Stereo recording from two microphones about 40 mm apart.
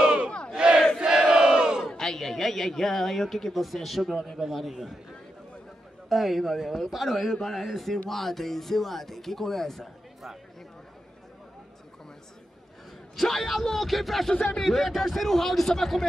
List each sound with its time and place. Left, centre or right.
0.0 s battle cry: right
0.6 s crowd: right
2.0 s a man's voice: centre
6.0 s a man's voice: centre
13.1 s a man's voice: centre